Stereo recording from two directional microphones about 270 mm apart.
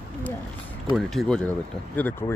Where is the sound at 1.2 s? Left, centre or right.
Centre.